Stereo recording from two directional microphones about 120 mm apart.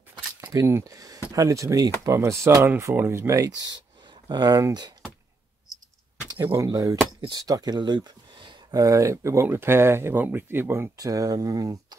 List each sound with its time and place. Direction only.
0.4 s speech: 25° right (ahead or behind)
4.1 s speech: 35° right (ahead or behind)
6.5 s speech: 25° right (ahead or behind)
8.8 s speech: 25° right (ahead or behind)
11.0 s speech: 30° right (ahead or behind)